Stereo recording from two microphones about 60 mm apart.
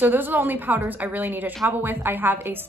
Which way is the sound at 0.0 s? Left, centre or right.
Right.